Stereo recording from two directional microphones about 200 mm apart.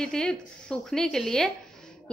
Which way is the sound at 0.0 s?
5° left (ahead or behind).